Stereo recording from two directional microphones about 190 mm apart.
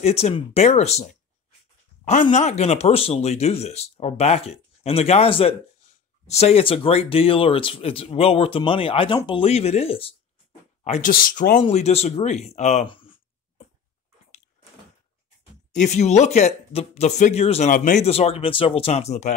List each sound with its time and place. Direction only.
0.0 s speech: 35° left (ahead or behind)
2.3 s speech: 35° left (ahead or behind)
10.8 s a sound: 35° left (ahead or behind)
11.1 s speech: 50° left (ahead or behind)
11.6 s speech: 35° left (ahead or behind)
15.7 s speech: 40° left (ahead or behind)